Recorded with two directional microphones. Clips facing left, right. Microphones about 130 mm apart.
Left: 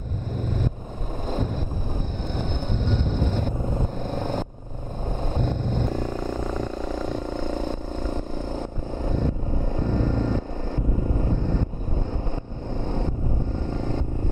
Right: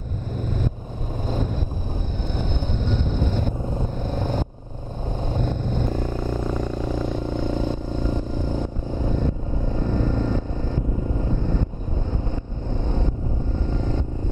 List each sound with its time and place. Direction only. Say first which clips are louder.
4.2 s vehicle: right 1 dB; 15° right (ahead or behind)
7.0 s vehicle: right 2 dB; 15° right (ahead or behind)
9.7 s vehicle: right 1 dB; 40° left (ahead or behind)
13.7 s vehicle: right 2 dB; 45° left (ahead or behind)